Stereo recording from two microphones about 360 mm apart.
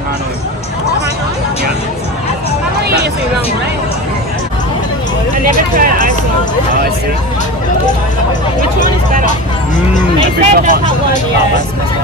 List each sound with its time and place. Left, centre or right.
5.8 s music: right
10.4 s speech: right